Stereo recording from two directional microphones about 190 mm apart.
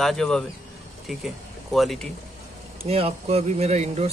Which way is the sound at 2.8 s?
30° right (ahead or behind).